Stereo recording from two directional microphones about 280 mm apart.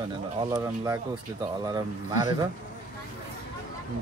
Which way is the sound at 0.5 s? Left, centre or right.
Centre.